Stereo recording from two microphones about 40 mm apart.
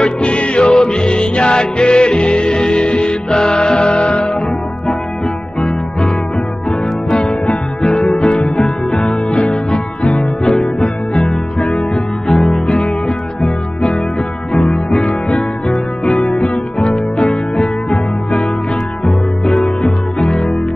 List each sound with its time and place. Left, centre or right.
0.0 s music: left
5.6 s music: left
7.8 s music: left
14.5 s music: left
19.8 s music: centre
20.3 s music: left